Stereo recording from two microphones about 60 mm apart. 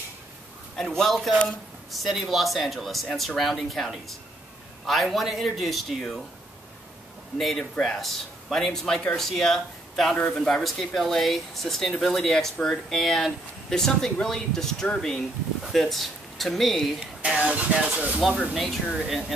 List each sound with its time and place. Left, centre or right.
0.7 s speech: centre
7.3 s speech: centre
17.2 s speech: centre
18.5 s speech: centre